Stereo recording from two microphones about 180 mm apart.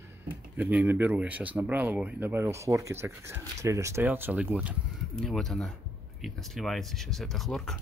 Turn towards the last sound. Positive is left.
turn(degrees=0)  # may be behind; listen again after turning